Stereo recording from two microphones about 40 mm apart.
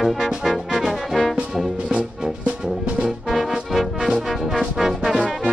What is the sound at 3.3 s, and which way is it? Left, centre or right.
Music, centre.